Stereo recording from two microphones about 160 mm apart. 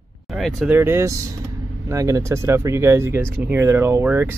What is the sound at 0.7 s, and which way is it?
Speech, 15° right (ahead or behind).